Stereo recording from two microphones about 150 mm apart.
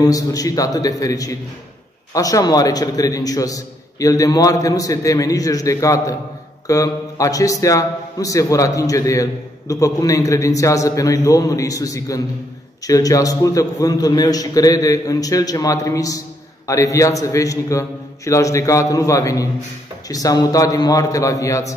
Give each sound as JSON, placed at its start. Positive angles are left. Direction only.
{"t": 0.0, "sound": "a man's voice", "side_deg": 25}